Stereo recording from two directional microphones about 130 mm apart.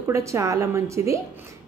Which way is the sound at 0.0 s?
20° right (ahead or behind).